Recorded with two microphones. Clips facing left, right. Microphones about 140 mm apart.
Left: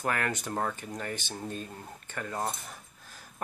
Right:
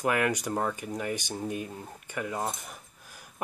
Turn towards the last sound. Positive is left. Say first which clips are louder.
# right 1 dB
turn(degrees=-10)  # may be behind; listen again after turning